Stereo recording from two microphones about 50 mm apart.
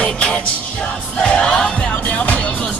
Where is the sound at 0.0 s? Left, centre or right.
Left.